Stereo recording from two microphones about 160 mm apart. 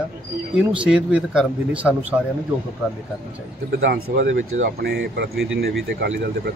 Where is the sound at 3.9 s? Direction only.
90° right.